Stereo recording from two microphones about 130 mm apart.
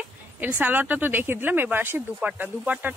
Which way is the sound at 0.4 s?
15° right (ahead or behind).